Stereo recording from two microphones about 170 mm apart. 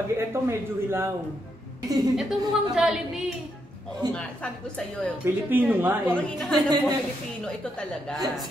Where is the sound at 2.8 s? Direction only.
Centre (ahead or behind).